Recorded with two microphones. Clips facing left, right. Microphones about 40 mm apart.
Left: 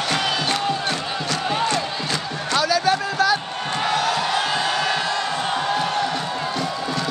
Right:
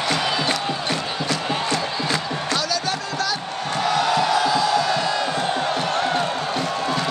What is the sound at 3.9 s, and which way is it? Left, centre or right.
Crowd, centre.